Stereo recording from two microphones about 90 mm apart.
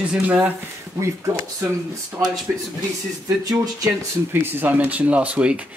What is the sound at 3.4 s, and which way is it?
Speech, 45° right (ahead or behind).